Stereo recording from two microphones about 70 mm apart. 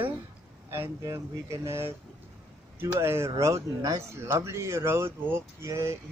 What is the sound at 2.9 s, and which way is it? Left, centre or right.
Speech, right.